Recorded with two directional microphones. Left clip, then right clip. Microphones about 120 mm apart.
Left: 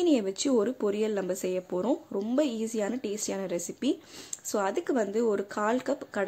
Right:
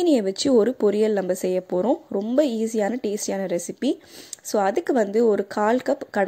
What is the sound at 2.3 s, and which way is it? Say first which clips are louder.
Speech: right 8 dB; 40° right (ahead or behind).